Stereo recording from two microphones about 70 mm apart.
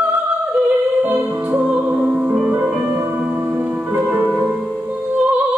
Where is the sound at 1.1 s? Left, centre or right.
Right.